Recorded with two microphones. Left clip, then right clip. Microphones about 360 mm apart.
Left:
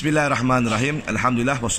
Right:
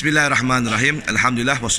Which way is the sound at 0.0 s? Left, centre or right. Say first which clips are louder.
Right 3 dB; centre.